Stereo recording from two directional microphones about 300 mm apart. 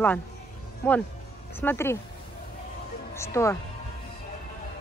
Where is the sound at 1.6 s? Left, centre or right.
Centre.